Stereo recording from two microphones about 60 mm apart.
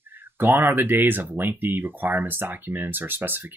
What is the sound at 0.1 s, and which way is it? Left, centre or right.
Speech, right.